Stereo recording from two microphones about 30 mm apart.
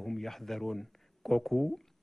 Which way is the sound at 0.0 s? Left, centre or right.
Centre.